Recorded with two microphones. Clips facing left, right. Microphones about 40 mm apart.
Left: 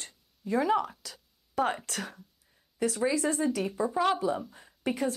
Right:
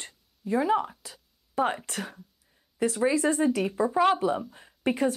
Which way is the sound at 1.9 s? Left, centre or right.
Right.